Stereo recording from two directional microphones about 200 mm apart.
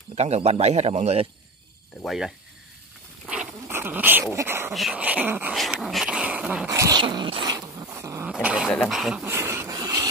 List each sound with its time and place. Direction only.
0.1 s a man's voice: 35° right (ahead or behind)
2.0 s speech: centre (ahead or behind)
3.3 s dog: 10° right (ahead or behind)
4.7 s speech: 5° right (ahead or behind)
9.2 s a sound: 10° right (ahead or behind)